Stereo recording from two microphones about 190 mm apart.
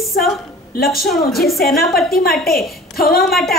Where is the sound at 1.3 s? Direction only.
Centre (ahead or behind).